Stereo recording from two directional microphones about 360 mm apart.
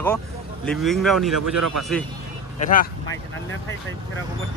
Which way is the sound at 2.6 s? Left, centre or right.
Centre.